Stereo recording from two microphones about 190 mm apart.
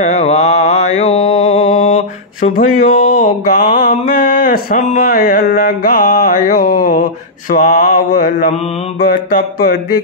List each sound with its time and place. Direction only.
0.0 s mantra: 35° left (ahead or behind)
5.0 s music: 50° left (ahead or behind)